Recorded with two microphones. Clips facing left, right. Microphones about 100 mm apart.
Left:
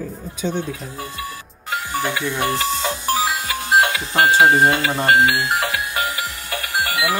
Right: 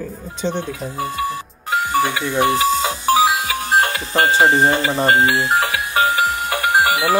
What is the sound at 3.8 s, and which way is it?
Music, 35° right (ahead or behind).